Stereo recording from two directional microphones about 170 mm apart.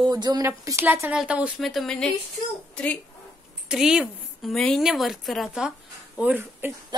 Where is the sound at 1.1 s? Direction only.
5° right (ahead or behind).